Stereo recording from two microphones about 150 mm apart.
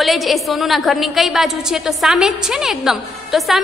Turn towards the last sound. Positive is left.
turn(degrees=0)  # may be behind; listen again after turning